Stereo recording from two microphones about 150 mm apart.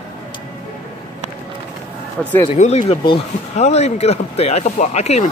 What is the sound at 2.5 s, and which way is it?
Speech, 45° left (ahead or behind).